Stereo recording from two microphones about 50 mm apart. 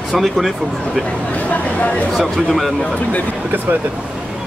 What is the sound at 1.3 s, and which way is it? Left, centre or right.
Speech, left.